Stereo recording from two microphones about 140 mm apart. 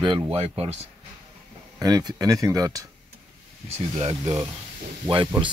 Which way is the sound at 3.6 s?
50° right (ahead or behind).